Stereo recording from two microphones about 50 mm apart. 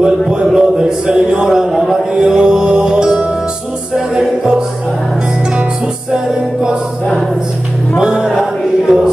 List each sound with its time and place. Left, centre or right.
0.0 s a sound: centre
6.1 s music: centre
8.0 s music: centre